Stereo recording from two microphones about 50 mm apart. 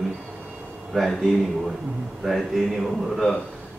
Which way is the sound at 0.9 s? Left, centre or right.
Centre.